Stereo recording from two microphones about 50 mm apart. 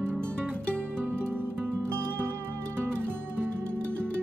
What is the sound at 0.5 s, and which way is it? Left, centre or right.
Music, left.